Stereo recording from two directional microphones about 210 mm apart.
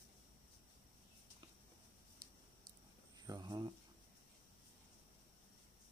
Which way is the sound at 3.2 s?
20° right (ahead or behind).